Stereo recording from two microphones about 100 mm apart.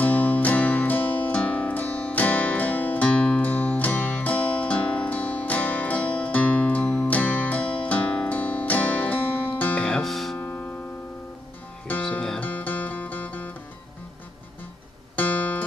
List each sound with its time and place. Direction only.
0.0 s music: 15° left (ahead or behind)
9.8 s guitar: 5° left (ahead or behind)
10.3 s music: 20° left (ahead or behind)
12.0 s music: 5° left (ahead or behind)
15.1 s guitar: 15° left (ahead or behind)